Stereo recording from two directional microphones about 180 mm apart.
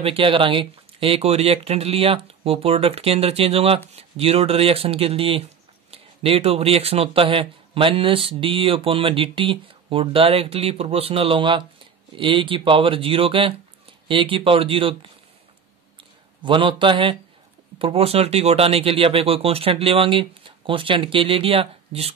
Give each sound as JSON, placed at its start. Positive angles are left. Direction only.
{"t": 0.0, "sound": "speech", "side_deg": -30}
{"t": 16.4, "sound": "speech", "side_deg": -25}